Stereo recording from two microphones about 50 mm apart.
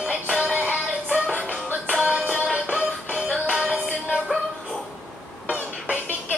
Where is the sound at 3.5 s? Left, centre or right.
Centre.